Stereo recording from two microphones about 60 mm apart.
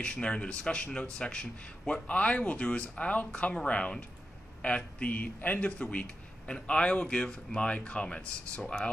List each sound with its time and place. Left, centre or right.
0.0 s speech: centre